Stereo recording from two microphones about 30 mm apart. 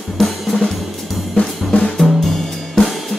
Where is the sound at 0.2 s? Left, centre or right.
Centre.